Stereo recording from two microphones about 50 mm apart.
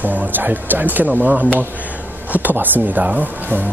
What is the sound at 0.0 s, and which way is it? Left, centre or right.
Speech, right.